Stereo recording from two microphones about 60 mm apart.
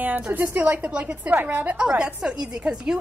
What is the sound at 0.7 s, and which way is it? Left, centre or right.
A woman's voice, right.